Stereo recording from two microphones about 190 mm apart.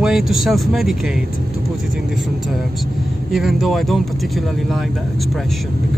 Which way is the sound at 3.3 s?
Centre (ahead or behind).